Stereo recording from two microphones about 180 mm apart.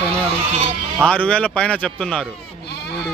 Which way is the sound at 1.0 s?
5° left (ahead or behind).